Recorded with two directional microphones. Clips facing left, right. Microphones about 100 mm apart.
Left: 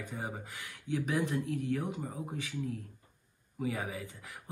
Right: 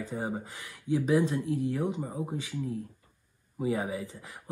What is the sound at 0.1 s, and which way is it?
Speech, 20° right (ahead or behind).